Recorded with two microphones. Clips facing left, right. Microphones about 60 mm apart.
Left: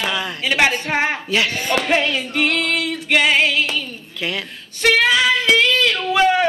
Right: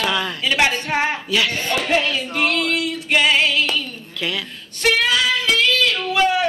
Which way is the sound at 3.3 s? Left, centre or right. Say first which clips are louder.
Left 1 dB; left.